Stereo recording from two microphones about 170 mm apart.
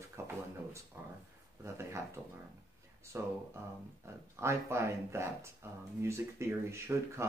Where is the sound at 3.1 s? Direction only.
15° right (ahead or behind).